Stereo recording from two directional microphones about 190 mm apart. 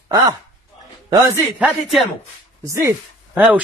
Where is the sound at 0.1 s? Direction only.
20° right (ahead or behind).